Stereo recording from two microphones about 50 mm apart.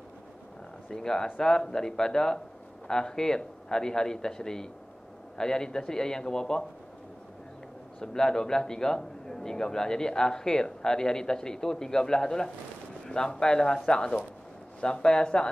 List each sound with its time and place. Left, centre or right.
0.8 s a man's voice: centre
8.0 s a man's voice: centre